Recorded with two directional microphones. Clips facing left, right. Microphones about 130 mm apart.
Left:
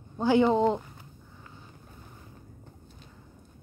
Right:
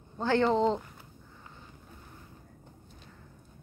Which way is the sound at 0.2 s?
10° left (ahead or behind).